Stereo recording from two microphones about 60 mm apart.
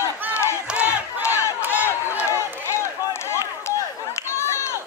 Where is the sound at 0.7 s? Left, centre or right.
Right.